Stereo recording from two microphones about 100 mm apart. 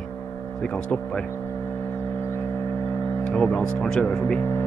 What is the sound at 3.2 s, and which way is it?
Speech, 10° left (ahead or behind).